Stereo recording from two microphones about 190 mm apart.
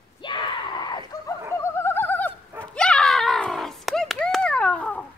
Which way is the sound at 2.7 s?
5° left (ahead or behind).